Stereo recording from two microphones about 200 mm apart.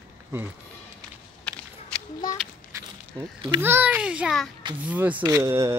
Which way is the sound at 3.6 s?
10° right (ahead or behind).